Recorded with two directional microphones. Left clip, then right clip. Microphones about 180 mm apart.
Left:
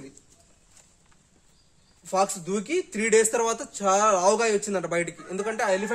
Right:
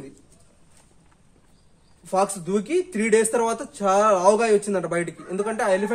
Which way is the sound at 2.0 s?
20° left (ahead or behind).